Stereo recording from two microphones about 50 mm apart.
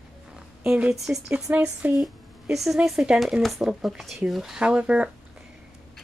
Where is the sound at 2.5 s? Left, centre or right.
Centre.